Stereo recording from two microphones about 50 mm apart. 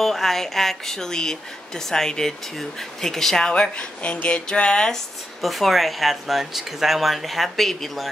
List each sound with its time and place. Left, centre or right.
0.0 s speech: centre
3.5 s speech: left; by 8.1 s centre